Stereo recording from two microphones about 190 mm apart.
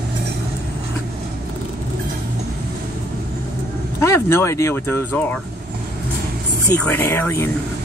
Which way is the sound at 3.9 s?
15° left (ahead or behind).